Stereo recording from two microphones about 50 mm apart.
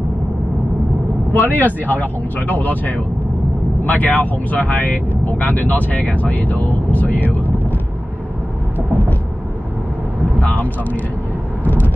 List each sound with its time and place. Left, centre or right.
1.3 s speech: left
8.7 s vehicle: right
10.4 s speech: left
11.6 s vehicle: left